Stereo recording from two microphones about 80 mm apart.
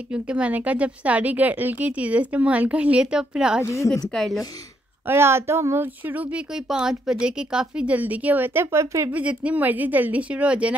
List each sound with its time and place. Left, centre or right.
0.1 s speech: centre
3.6 s a woman's voice: left
4.1 s a woman's voice: centre
5.0 s speech: right
6.0 s speech: right
6.5 s speech: centre
8.7 s speech: right
9.1 s speech: centre